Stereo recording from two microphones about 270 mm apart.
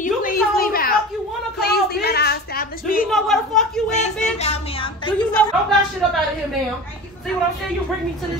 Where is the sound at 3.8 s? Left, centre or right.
Left.